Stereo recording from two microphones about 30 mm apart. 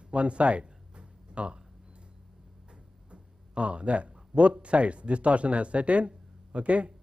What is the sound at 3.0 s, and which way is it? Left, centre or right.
Speech, right.